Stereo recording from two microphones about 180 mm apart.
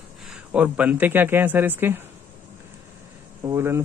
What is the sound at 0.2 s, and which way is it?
A man's voice, 5° right (ahead or behind).